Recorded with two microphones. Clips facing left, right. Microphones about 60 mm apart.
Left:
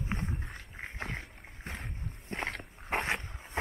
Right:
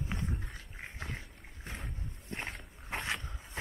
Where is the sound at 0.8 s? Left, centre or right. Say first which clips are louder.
Left 4 dB; left.